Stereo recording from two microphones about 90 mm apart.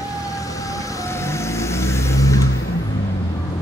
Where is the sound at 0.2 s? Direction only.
40° left (ahead or behind).